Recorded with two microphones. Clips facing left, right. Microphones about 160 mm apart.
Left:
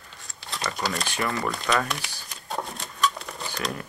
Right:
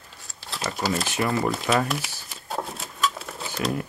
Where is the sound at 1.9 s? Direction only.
5° right (ahead or behind).